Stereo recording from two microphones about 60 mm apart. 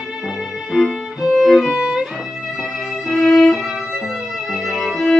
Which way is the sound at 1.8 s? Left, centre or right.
Centre.